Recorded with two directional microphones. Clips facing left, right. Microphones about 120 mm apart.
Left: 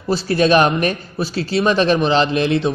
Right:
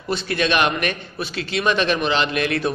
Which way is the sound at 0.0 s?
35° left (ahead or behind).